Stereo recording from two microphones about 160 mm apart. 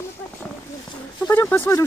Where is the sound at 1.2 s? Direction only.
10° left (ahead or behind).